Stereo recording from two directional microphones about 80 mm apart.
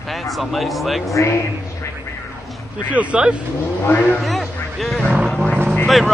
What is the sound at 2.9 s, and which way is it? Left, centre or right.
Speech, centre.